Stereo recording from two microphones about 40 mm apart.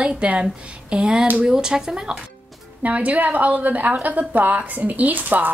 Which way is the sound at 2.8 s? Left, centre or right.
Right.